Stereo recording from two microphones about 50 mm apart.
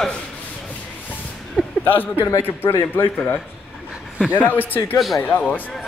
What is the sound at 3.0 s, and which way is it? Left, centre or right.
Speech, left.